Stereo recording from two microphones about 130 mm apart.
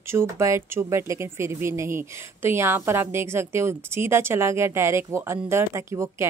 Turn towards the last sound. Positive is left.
turn(degrees=-20)  # may be behind; listen again after turning